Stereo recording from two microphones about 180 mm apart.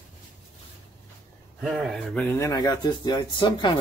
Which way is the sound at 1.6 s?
Centre (ahead or behind).